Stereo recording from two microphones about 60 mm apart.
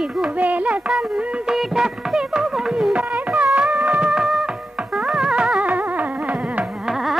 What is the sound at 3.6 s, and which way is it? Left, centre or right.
Music, right.